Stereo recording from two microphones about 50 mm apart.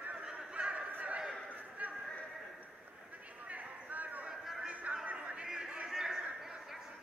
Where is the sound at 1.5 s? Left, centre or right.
Right.